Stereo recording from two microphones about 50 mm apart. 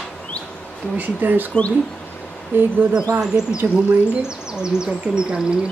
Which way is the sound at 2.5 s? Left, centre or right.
Right.